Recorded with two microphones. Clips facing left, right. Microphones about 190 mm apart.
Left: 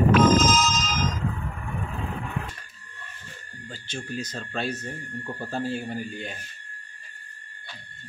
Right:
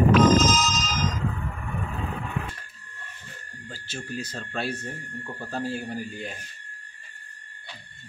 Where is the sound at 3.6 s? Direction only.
5° right (ahead or behind).